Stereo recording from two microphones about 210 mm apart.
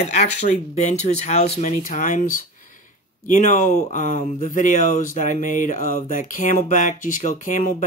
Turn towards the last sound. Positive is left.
turn(degrees=35)  # may be behind; listen again after turning